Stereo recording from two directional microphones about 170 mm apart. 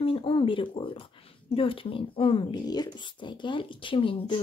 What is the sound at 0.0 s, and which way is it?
A woman's voice, 30° left (ahead or behind).